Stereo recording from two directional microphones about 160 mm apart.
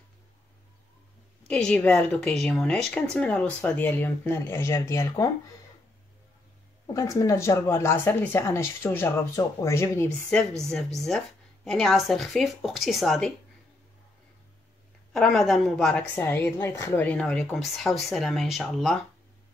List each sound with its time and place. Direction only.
1.5 s speech: 5° left (ahead or behind)
6.9 s speech: 20° left (ahead or behind)
10.6 s speech: 5° left (ahead or behind)
15.1 s speech: centre (ahead or behind)
16.2 s speech: 15° left (ahead or behind)